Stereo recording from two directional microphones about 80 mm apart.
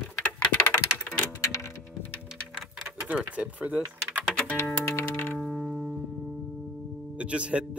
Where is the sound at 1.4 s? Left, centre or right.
Left.